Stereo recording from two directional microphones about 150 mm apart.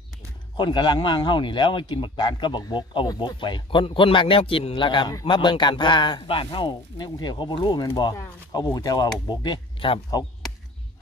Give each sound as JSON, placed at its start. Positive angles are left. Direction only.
{"t": 0.6, "sound": "a man's voice", "side_deg": 30}